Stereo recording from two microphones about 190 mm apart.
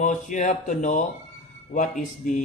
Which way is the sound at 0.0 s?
40° left (ahead or behind).